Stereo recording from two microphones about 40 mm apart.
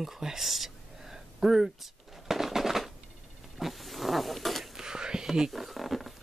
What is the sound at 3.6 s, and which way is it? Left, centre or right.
Roaring cats, centre.